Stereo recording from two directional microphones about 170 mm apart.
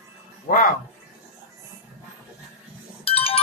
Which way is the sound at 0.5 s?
55° left (ahead or behind).